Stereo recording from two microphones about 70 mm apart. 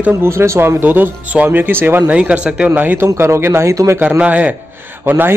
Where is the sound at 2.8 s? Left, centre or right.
Right.